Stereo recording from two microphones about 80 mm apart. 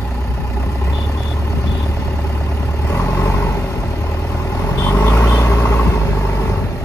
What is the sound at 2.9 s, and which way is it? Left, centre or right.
Vehicle, left.